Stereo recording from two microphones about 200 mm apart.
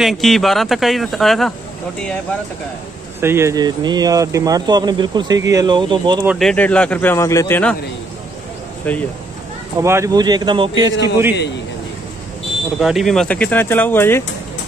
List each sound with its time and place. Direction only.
0.0 s speech: centre (ahead or behind)
3.2 s speech: 10° right (ahead or behind)
6.2 s speech: centre (ahead or behind)
8.9 s speech: 5° left (ahead or behind)
9.8 s speech: 15° right (ahead or behind)
12.7 s speech: centre (ahead or behind)